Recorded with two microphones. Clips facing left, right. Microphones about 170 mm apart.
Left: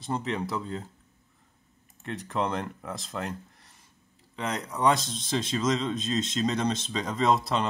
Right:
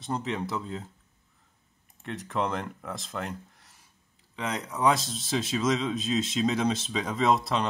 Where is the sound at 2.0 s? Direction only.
Centre (ahead or behind).